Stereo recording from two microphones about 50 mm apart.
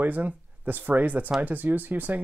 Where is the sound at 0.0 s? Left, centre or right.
Right.